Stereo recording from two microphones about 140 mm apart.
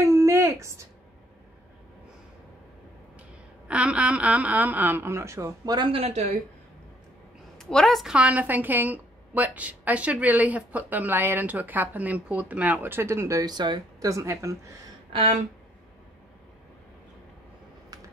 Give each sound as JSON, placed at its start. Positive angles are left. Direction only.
{"t": 0.0, "sound": "a sound", "side_deg": -20}
{"t": 3.6, "sound": "a woman's voice", "side_deg": -10}
{"t": 7.5, "sound": "a woman's voice", "side_deg": 5}